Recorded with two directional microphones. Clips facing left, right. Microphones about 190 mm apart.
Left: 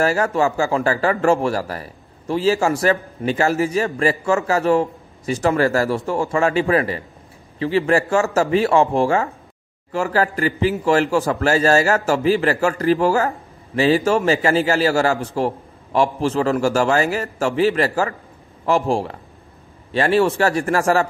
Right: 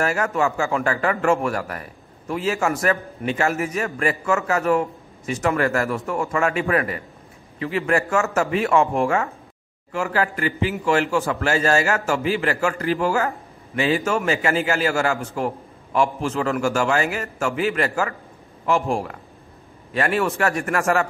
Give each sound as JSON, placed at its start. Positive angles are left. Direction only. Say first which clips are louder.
{"t": 0.0, "sound": "speech", "louder": "left 4 dB", "side_deg": 30}